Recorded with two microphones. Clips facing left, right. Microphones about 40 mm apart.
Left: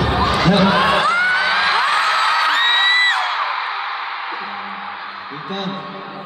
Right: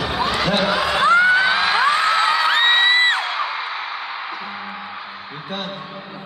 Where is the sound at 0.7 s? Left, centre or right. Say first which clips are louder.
Left 5 dB; left.